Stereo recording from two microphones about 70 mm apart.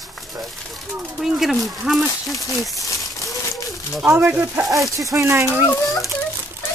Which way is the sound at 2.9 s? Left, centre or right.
Left.